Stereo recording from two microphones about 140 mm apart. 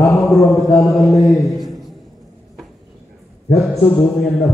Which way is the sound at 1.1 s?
Centre (ahead or behind).